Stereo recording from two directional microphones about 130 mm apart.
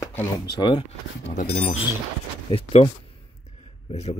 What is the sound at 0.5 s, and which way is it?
Speech, 35° left (ahead or behind).